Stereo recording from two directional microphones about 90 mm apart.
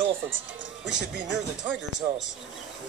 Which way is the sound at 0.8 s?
5° right (ahead or behind).